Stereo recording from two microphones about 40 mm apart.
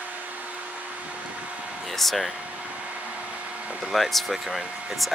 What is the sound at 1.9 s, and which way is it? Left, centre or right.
Speech, centre.